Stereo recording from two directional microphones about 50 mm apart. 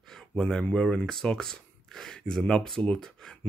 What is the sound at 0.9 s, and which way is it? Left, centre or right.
Speech, centre.